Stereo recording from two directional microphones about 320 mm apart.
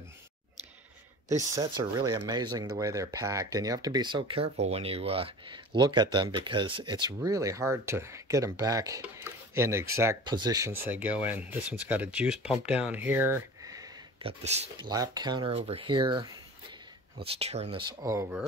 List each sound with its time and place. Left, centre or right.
1.3 s speech: centre